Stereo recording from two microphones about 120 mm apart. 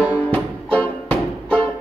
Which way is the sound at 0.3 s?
15° left (ahead or behind).